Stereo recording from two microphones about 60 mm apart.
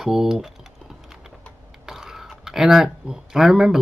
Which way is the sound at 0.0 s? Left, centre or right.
Centre.